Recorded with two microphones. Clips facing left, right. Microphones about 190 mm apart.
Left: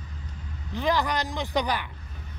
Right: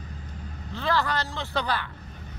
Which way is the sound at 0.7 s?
15° left (ahead or behind).